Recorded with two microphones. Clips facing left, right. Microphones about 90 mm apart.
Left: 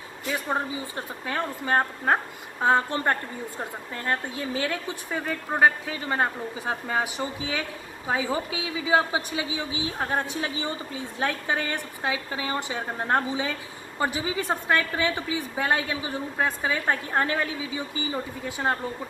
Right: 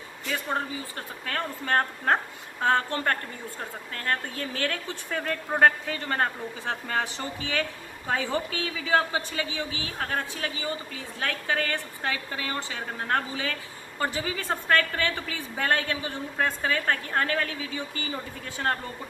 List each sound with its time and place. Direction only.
0.3 s a woman's voice: 15° left (ahead or behind)